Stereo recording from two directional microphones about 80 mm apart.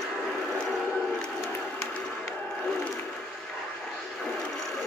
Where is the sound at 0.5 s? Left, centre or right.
Centre.